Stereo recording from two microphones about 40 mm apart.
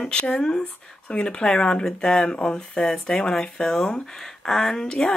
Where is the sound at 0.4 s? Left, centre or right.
Left.